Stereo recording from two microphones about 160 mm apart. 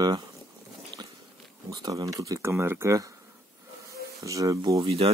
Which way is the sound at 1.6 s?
25° right (ahead or behind).